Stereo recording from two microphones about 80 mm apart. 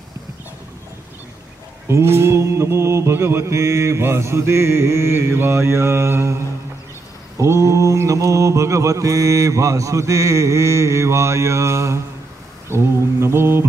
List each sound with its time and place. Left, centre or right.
1.9 s mantra: right